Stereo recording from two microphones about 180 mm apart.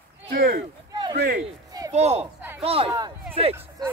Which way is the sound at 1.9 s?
35° right (ahead or behind).